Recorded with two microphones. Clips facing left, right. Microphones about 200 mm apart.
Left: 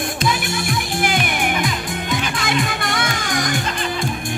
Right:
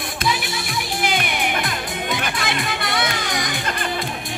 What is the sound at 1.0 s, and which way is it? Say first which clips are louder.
Music: left 1 dB; 50° left (ahead or behind).